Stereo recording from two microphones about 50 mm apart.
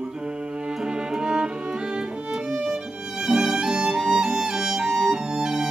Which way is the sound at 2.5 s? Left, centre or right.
Centre.